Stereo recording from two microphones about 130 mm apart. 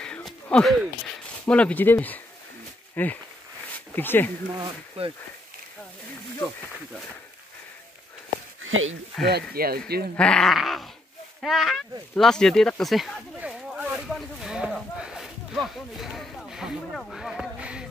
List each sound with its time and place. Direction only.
0.0 s a sound: 5° left (ahead or behind)
1.4 s speech: 10° left (ahead or behind)
4.6 s speech: 45° right (ahead or behind)
9.1 s speech: 5° left (ahead or behind)